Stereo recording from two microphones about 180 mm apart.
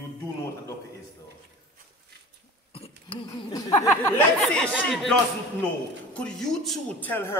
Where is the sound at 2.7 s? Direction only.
30° left (ahead or behind).